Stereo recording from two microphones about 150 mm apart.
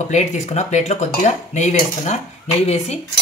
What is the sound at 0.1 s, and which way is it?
Speech, 50° left (ahead or behind).